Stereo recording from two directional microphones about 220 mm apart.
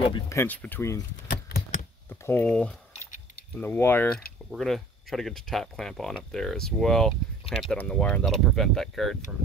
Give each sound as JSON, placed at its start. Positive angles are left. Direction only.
{"t": 0.0, "sound": "speech", "side_deg": 20}
{"t": 0.4, "sound": "speech", "side_deg": 10}
{"t": 2.0, "sound": "speech", "side_deg": 10}